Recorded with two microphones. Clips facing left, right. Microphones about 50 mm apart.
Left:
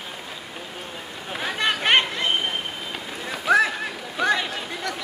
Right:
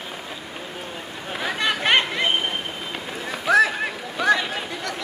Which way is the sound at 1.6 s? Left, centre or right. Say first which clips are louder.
Even; left.